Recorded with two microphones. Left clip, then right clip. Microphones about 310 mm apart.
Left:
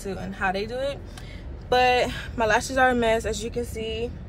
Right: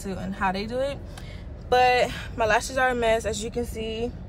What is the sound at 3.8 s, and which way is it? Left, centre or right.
Speech, left.